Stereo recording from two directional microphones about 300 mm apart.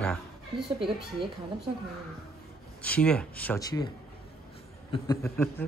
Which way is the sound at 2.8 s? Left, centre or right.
Centre.